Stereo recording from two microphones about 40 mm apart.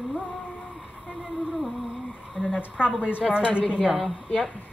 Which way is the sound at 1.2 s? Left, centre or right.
Centre.